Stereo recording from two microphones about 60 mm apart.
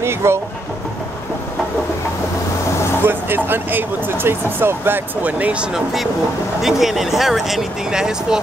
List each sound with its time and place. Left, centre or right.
0.0 s vehicle: right
3.1 s speech: right
5.2 s speech: right
6.6 s speech: centre